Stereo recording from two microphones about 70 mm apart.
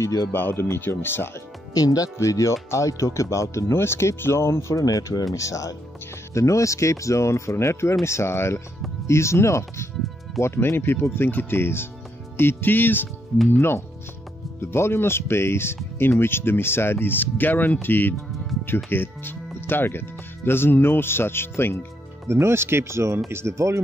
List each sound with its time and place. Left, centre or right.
0.0 s speech: left
0.3 s speech: left
1.7 s speech: left
4.8 s speech: left
12.4 s music: left
13.6 s speech: left
17.8 s music: left
18.9 s speech: left
22.3 s speech: right